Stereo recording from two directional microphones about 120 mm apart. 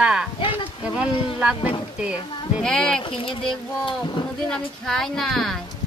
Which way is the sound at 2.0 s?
5° right (ahead or behind).